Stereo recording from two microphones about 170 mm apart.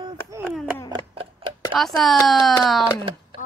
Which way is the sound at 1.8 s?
Centre (ahead or behind).